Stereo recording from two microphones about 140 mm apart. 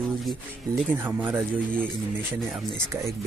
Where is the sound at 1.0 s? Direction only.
15° right (ahead or behind).